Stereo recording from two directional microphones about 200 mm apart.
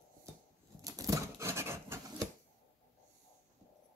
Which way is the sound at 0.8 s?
15° right (ahead or behind).